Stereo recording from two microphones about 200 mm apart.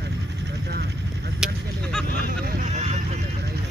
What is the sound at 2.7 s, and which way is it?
Honk, 35° right (ahead or behind).